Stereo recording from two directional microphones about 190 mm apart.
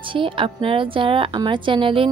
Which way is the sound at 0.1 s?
25° right (ahead or behind).